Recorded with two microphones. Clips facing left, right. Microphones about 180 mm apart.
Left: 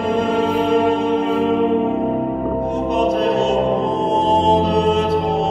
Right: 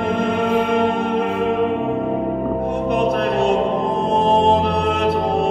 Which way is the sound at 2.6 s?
60° right (ahead or behind).